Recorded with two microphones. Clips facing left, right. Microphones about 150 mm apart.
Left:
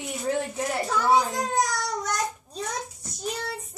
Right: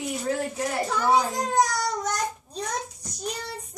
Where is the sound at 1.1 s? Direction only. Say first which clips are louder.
Right 1 dB; centre (ahead or behind).